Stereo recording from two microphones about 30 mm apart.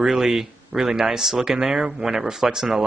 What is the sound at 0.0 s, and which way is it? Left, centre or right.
Speech, centre.